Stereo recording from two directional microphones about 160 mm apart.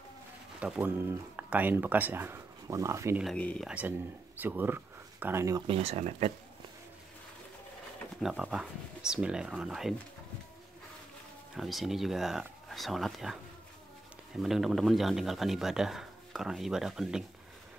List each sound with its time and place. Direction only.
0.6 s speech: 10° right (ahead or behind)
3.3 s speech: 10° left (ahead or behind)
3.6 s speech: 10° right (ahead or behind)
5.7 s speech: 40° right (ahead or behind)
8.2 s speech: 5° right (ahead or behind)
11.5 s speech: centre (ahead or behind)